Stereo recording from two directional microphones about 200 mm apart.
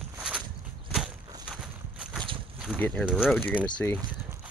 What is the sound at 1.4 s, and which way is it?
Walk, centre (ahead or behind).